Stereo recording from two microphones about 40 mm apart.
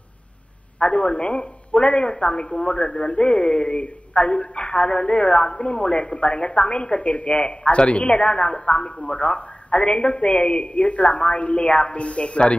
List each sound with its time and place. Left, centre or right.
0.7 s speech: left